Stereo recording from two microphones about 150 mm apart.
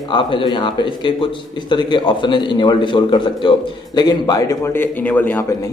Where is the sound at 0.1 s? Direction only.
35° left (ahead or behind).